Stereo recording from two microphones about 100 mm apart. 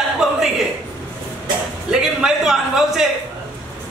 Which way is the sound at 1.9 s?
5° right (ahead or behind).